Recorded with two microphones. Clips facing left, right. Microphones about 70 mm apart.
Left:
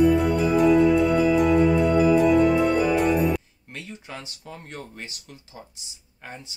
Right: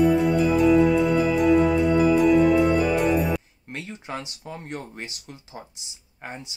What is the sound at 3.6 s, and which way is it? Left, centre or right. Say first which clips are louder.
Speech: right 3 dB; right.